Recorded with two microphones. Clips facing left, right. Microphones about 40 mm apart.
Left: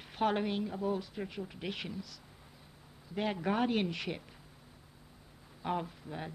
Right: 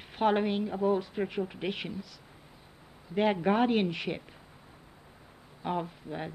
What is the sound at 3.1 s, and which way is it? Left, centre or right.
Speech, right.